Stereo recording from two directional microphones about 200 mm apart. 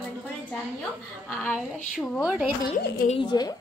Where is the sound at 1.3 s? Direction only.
Centre (ahead or behind).